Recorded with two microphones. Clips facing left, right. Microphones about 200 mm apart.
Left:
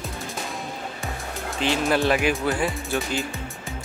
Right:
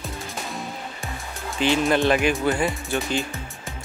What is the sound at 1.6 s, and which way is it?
Speech, centre (ahead or behind).